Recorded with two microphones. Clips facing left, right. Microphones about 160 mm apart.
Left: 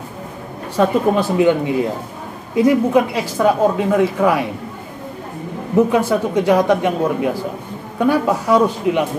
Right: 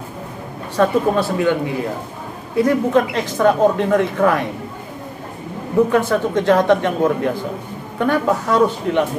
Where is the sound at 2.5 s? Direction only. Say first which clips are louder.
Left 2 dB; 10° left (ahead or behind).